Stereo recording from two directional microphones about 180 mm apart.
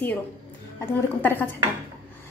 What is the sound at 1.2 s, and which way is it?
Speech, 10° left (ahead or behind).